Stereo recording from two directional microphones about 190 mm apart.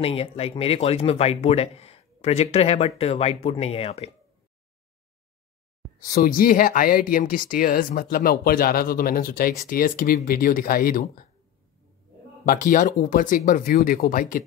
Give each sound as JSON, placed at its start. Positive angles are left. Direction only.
{"t": 0.0, "sound": "speech", "side_deg": 30}
{"t": 6.1, "sound": "speech", "side_deg": 50}
{"t": 12.4, "sound": "speech", "side_deg": 50}